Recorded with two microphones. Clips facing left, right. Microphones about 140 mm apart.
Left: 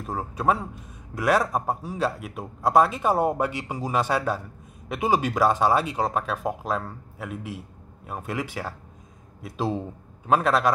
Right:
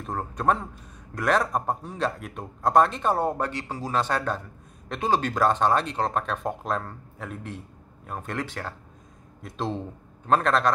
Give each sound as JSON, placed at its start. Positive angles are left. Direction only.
{"t": 0.0, "sound": "a man's voice", "side_deg": 5}